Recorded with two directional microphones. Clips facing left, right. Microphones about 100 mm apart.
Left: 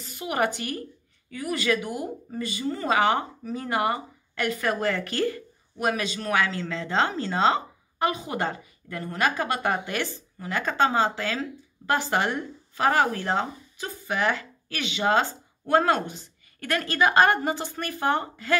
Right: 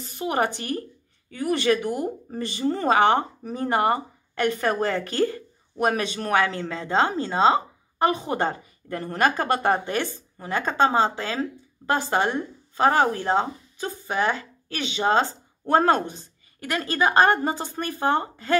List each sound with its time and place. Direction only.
0.0 s speech: 35° right (ahead or behind)
5.9 s speech: 35° right (ahead or behind)
7.2 s speech: 20° right (ahead or behind)
8.0 s speech: 35° right (ahead or behind)